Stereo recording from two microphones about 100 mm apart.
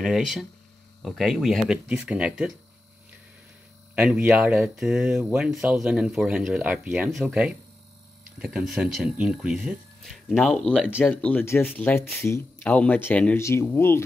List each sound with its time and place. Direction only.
0.0 s speech: 5° right (ahead or behind)
1.9 s speech: 10° right (ahead or behind)
3.9 s speech: 15° right (ahead or behind)
4.6 s speech: 5° right (ahead or behind)
6.9 s speech: centre (ahead or behind); by 12.4 s 25° left (ahead or behind)
12.6 s speech: 15° left (ahead or behind)
13.4 s speech: 30° left (ahead or behind)